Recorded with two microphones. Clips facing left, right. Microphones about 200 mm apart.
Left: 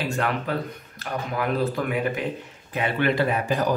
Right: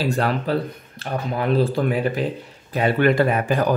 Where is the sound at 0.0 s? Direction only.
35° right (ahead or behind).